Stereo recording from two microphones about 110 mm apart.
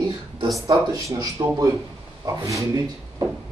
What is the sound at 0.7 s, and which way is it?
Speech, 35° right (ahead or behind).